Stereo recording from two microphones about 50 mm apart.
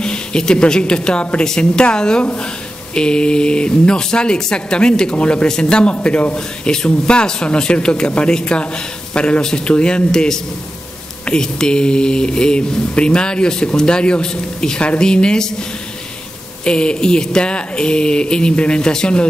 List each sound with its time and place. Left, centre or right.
0.0 s speech: centre
16.6 s speech: centre